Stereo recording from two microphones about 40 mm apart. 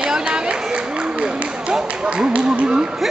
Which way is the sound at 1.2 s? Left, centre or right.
Right.